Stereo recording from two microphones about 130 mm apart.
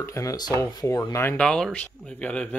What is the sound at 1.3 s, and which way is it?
Speech, 5° left (ahead or behind).